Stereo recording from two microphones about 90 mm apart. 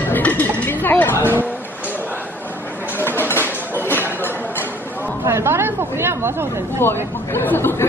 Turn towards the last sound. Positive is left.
turn(degrees=25)  # may be behind; listen again after turning